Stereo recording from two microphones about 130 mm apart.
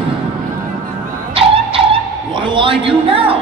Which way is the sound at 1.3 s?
45° right (ahead or behind).